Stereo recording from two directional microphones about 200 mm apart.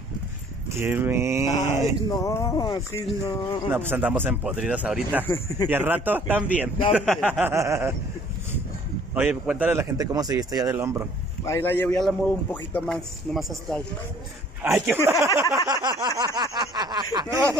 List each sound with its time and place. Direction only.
0.7 s a man's voice: 10° right (ahead or behind)
2.0 s speech: 15° left (ahead or behind)
3.7 s speech: 10° right (ahead or behind)
5.2 s speech: 15° left (ahead or behind)
5.7 s a man's voice: 10° right (ahead or behind)
9.1 s a man's voice: 5° right (ahead or behind)
11.4 s speech: 15° left (ahead or behind)
14.6 s a man's voice: 10° right (ahead or behind)
15.5 s a sound: 20° right (ahead or behind)